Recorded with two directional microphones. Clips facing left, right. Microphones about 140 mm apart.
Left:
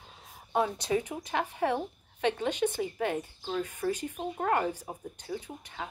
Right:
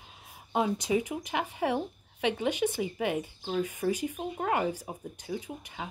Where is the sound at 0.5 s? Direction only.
10° right (ahead or behind).